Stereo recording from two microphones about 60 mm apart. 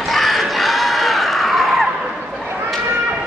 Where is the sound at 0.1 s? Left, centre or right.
Centre.